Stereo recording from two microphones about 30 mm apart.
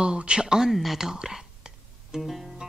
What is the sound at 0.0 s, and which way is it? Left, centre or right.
Speech, right.